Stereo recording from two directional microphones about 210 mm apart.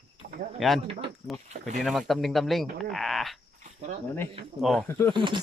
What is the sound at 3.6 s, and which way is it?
Cricket, 35° right (ahead or behind).